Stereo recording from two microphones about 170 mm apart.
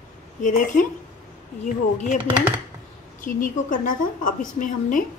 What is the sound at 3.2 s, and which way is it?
Speech, 50° left (ahead or behind).